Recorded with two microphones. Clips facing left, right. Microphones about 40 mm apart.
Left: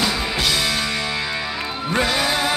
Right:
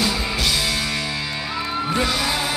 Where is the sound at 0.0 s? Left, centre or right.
Left.